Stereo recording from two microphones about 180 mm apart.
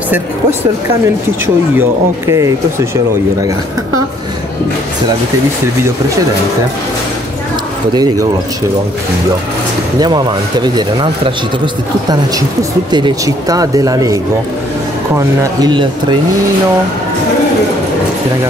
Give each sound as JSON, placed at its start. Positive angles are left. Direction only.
{"t": 1.0, "sound": "speech", "side_deg": -15}
{"t": 7.9, "sound": "speech", "side_deg": -20}
{"t": 9.9, "sound": "speech", "side_deg": -25}